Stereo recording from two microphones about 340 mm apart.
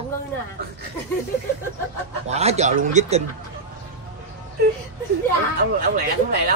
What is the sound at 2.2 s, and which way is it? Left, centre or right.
Speech, centre.